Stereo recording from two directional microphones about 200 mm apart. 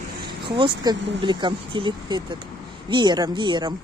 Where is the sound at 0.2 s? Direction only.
25° right (ahead or behind).